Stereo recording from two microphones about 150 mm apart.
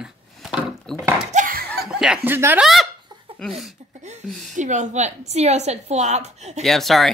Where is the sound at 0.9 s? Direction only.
10° right (ahead or behind).